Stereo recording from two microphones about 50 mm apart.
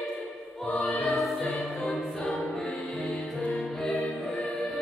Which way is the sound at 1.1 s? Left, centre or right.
Centre.